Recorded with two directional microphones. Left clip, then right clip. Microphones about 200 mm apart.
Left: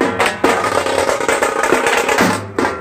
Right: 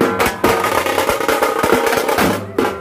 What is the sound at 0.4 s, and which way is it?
Music, 50° right (ahead or behind).